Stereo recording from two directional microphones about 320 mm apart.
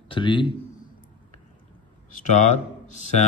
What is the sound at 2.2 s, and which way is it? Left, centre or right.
Speech, left.